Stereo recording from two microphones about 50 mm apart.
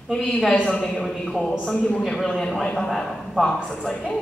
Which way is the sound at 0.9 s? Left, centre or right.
Centre.